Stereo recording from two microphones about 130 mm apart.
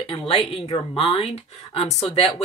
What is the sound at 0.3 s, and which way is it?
Speech, 45° left (ahead or behind).